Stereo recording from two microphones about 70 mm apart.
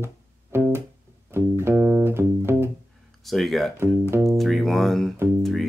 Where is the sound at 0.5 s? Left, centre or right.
Right.